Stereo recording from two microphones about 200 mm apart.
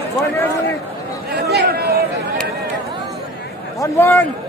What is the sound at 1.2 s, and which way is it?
Chatter, 50° right (ahead or behind).